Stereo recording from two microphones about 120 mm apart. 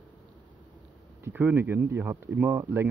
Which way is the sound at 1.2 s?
15° right (ahead or behind).